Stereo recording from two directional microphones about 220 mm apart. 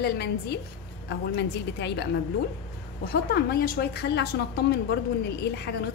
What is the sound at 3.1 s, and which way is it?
A woman's voice, 45° left (ahead or behind).